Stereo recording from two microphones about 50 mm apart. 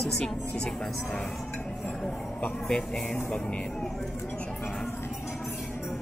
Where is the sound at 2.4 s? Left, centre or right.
Left.